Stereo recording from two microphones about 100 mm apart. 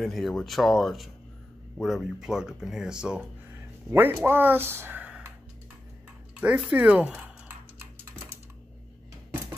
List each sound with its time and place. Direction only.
0.0 s speech: 5° left (ahead or behind)
3.9 s speech: 25° right (ahead or behind)
6.4 s speech: 10° right (ahead or behind)